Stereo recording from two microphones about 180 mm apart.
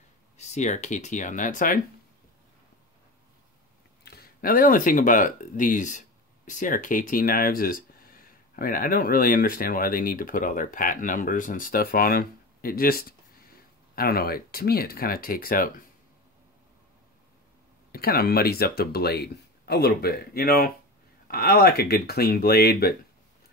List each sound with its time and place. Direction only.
0.4 s speech: 40° left (ahead or behind)
4.0 s speech: 60° left (ahead or behind)
17.9 s speech: 55° left (ahead or behind)